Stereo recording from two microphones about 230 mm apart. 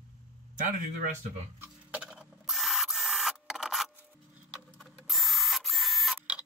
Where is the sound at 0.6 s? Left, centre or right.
Right.